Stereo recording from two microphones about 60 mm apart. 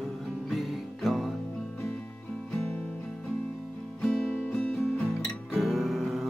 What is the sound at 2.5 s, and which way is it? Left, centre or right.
Music, centre.